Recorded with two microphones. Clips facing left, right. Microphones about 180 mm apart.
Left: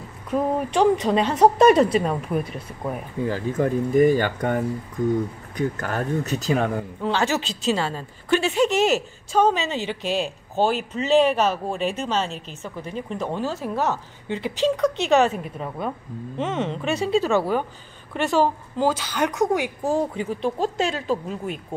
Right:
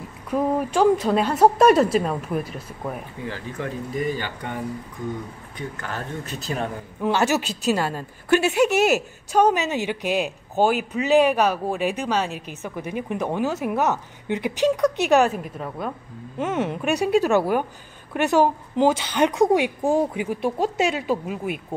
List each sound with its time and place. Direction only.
0.3 s a woman's voice: 5° right (ahead or behind)
3.3 s speech: 45° left (ahead or behind)
5.6 s speech: 45° left (ahead or behind)
7.0 s a woman's voice: 10° right (ahead or behind)